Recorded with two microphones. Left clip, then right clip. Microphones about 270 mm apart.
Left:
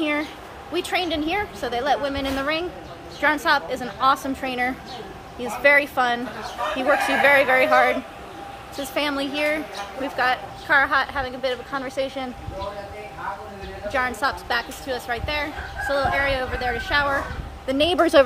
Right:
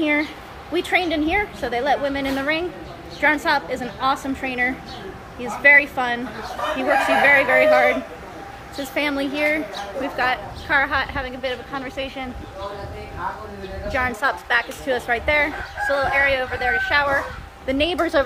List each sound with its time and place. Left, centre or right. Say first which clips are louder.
0.0 s a woman's voice: right 4 dB; centre
8.9 s a woman's voice: right 2 dB; centre
13.9 s a woman's voice: right 2 dB; centre
17.6 s a woman's voice: left 1 dB; left